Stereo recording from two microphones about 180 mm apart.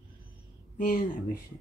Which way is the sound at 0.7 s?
50° left (ahead or behind).